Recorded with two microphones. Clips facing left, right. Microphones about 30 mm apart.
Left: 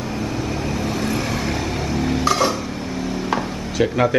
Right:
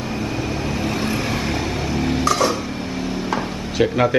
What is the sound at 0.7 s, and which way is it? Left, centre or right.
Vehicle, right.